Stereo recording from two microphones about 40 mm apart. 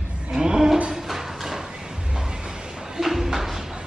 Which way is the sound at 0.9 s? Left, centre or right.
Centre.